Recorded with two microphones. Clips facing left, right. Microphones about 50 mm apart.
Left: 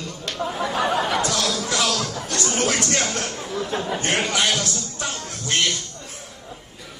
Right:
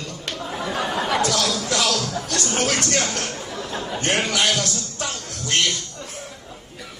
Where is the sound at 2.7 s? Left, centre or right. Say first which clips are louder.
Right 1 dB; right.